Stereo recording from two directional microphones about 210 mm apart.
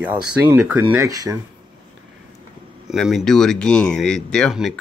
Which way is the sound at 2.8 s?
Centre (ahead or behind).